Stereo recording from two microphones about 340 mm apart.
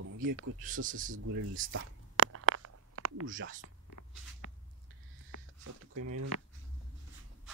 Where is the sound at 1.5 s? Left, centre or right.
Right.